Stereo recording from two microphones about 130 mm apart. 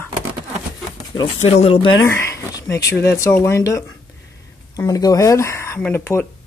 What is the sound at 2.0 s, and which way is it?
Speech, 20° left (ahead or behind).